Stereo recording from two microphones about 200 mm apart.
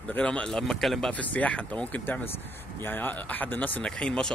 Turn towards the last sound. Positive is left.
turn(degrees=5)  # may be behind; listen again after turning